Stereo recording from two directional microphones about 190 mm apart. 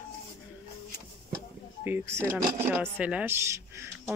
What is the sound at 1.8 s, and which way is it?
Speech, 15° right (ahead or behind).